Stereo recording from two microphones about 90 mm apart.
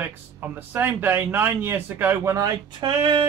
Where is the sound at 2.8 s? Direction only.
60° right (ahead or behind).